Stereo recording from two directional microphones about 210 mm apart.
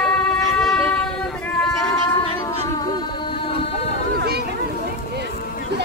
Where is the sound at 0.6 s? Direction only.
5° left (ahead or behind).